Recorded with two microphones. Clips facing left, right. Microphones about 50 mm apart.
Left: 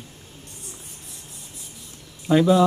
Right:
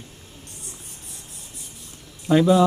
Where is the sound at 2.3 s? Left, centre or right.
Centre.